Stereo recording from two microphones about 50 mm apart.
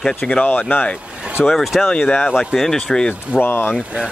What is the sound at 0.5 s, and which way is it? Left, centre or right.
Speech, left.